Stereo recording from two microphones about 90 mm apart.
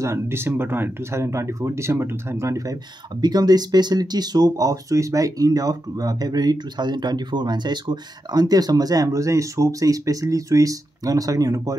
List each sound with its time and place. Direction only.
0.0 s speech: 30° right (ahead or behind)